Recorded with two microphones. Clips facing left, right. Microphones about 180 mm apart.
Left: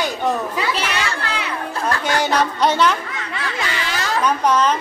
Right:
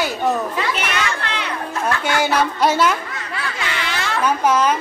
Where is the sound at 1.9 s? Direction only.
40° left (ahead or behind).